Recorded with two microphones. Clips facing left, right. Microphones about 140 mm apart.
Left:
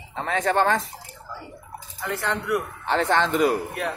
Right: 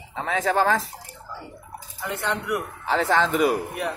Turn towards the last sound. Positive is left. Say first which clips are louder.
# even
turn(degrees=-10)  # may be behind; listen again after turning